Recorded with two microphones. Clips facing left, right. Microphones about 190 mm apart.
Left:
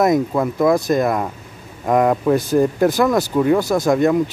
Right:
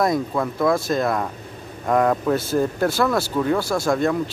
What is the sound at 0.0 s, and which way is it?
Speech, 15° left (ahead or behind).